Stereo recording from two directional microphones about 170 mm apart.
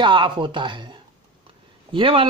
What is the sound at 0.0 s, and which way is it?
Speech, 30° right (ahead or behind).